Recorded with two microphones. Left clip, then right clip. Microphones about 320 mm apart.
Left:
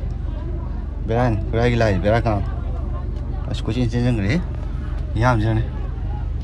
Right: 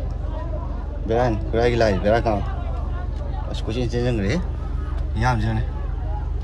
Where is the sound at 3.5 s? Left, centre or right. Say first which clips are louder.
Left 1 dB; centre.